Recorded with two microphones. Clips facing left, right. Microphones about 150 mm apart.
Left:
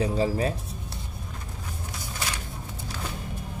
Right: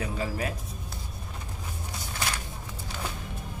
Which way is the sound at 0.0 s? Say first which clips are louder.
Left 7 dB; 30° left (ahead or behind).